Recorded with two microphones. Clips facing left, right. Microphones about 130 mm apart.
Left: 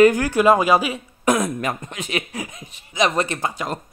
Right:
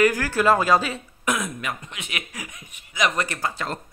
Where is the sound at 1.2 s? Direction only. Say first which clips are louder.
Left 7 dB; 35° left (ahead or behind).